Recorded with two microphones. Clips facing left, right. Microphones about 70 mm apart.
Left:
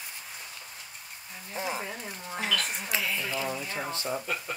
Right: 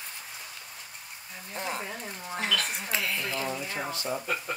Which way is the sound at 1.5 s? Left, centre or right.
Centre.